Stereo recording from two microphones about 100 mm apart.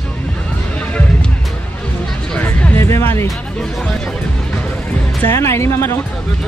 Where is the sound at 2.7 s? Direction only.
25° left (ahead or behind).